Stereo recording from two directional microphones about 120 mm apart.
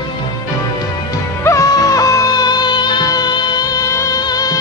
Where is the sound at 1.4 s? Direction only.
25° left (ahead or behind).